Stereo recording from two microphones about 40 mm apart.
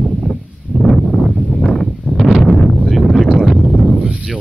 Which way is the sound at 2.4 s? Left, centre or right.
Centre.